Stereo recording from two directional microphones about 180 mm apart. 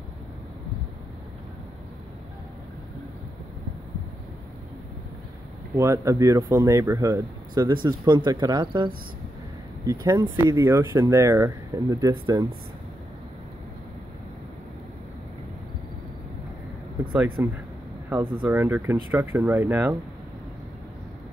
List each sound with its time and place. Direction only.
5.8 s speech: 15° right (ahead or behind)
17.1 s speech: 10° right (ahead or behind)
18.5 s speech: 10° right (ahead or behind)